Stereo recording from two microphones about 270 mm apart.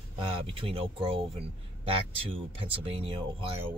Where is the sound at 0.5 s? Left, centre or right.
Right.